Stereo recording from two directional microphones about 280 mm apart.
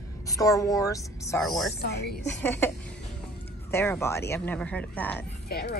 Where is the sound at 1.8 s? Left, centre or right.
Left.